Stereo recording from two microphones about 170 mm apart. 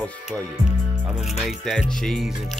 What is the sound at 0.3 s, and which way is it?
Speech, 5° right (ahead or behind).